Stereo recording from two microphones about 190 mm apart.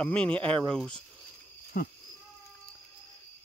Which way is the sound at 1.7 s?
55° left (ahead or behind).